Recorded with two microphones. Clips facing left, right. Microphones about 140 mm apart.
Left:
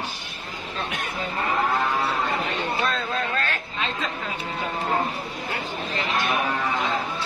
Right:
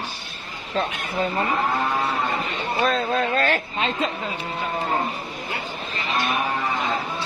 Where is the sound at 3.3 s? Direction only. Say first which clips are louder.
Right 6 dB; 35° right (ahead or behind).